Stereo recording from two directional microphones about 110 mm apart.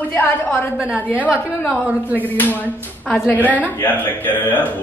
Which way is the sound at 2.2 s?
15° left (ahead or behind).